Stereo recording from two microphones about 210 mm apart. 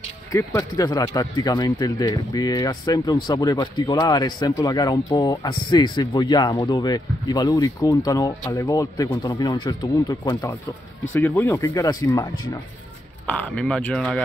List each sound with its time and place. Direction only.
0.3 s speech: 15° left (ahead or behind)
13.6 s speech: 5° left (ahead or behind)